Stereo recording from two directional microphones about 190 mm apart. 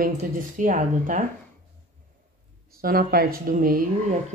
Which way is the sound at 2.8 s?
50° right (ahead or behind).